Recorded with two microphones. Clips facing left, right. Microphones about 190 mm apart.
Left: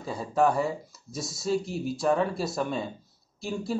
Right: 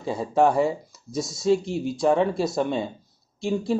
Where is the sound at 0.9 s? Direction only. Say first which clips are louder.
Right 7 dB; centre (ahead or behind).